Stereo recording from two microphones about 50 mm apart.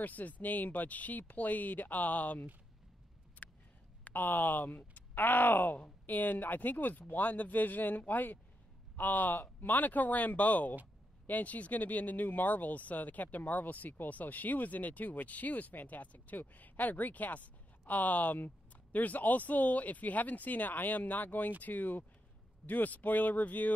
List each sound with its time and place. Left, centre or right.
0.0 s speech: left
3.4 s a sound: left
4.1 s speech: left